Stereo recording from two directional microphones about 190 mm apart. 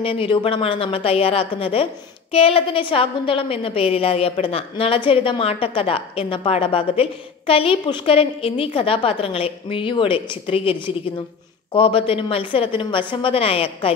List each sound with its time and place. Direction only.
0.0 s a woman's voice: 30° left (ahead or behind)